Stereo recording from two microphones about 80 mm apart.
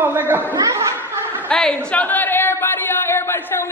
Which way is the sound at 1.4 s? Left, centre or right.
Centre.